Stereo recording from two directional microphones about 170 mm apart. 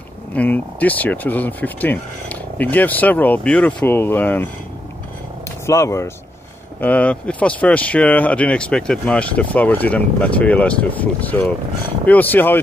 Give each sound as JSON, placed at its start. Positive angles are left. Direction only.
{"t": 0.4, "sound": "speech", "side_deg": 10}
{"t": 5.7, "sound": "speech", "side_deg": 15}